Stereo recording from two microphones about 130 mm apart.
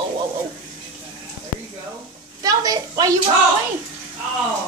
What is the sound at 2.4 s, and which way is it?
Speech, 30° right (ahead or behind).